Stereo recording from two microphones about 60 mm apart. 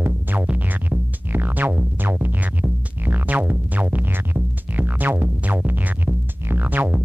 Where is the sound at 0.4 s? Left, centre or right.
Right.